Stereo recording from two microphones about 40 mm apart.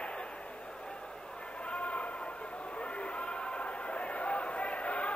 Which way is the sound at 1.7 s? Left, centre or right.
Left.